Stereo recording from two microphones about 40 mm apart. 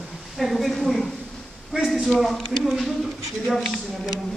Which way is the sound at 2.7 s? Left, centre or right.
Centre.